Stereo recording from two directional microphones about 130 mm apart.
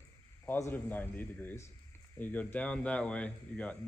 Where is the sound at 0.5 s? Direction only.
15° left (ahead or behind).